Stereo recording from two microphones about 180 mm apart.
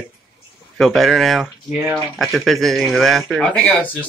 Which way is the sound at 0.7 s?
Centre (ahead or behind).